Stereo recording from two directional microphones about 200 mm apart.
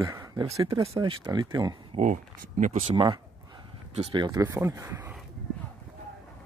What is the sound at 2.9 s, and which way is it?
Speech, 20° right (ahead or behind).